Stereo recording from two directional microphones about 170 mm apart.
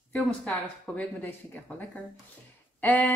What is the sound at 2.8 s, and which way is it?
Speech, 10° left (ahead or behind).